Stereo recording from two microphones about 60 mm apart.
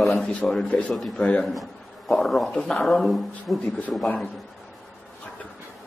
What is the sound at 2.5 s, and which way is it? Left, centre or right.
Speech, centre.